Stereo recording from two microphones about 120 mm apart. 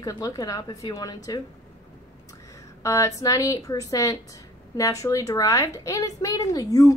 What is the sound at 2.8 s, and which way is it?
A woman's voice, 25° left (ahead or behind).